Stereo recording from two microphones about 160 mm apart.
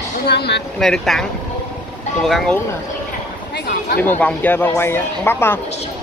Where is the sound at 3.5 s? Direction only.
85° left.